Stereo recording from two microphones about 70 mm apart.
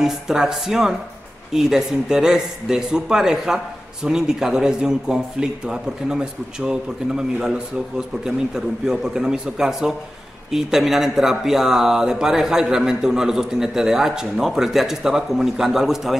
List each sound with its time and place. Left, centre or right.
0.0 s speech: centre